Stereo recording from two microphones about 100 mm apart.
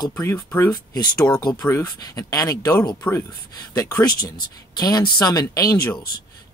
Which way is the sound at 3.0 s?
20° left (ahead or behind).